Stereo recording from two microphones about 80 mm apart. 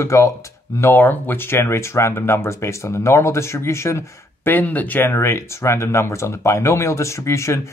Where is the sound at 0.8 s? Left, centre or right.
Left.